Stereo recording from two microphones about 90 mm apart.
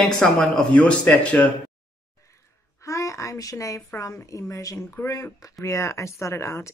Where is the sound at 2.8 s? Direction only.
35° left (ahead or behind).